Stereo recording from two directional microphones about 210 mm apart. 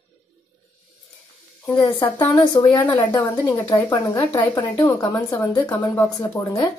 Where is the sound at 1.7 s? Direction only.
20° left (ahead or behind).